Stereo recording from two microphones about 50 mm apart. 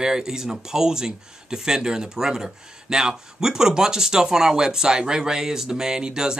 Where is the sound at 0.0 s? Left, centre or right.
Centre.